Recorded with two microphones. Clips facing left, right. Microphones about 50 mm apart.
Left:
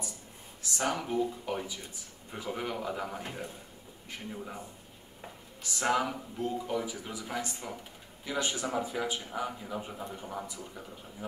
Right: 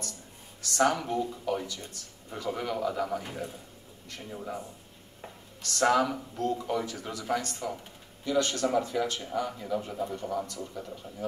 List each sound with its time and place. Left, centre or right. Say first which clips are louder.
0.8 s speech: right 1 dB; centre
5.6 s speech: right 5 dB; centre